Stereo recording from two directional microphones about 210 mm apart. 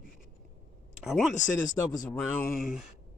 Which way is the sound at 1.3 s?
40° left (ahead or behind).